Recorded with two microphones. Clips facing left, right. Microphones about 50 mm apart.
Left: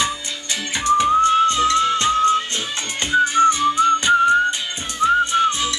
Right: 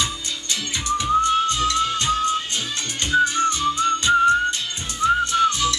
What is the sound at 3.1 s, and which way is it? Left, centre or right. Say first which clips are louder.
Whistling: left 4 dB; left.